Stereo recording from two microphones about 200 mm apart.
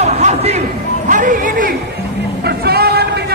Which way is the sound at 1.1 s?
40° right (ahead or behind).